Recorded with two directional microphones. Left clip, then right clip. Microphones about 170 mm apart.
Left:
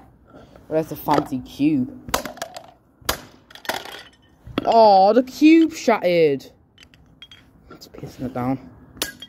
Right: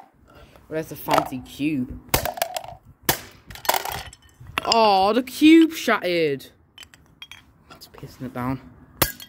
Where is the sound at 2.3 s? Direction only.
30° right (ahead or behind).